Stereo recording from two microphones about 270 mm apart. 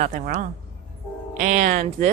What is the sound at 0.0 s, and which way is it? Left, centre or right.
Speech, right.